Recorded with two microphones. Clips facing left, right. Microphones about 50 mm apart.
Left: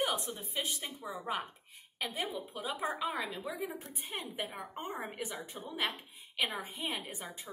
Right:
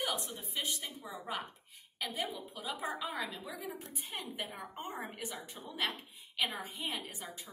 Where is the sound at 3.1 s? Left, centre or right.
Centre.